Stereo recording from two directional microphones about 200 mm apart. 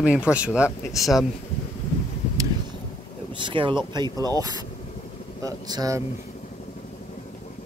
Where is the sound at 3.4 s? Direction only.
25° right (ahead or behind).